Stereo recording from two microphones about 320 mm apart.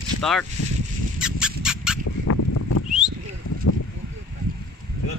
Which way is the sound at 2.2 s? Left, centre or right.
Left.